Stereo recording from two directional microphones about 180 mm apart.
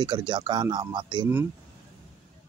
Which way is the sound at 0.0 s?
25° right (ahead or behind).